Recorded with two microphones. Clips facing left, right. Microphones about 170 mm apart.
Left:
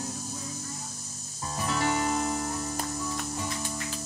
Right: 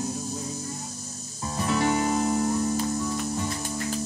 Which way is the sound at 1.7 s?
15° right (ahead or behind).